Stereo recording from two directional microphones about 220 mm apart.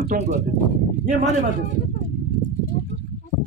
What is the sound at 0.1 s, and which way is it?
Speech, 40° right (ahead or behind).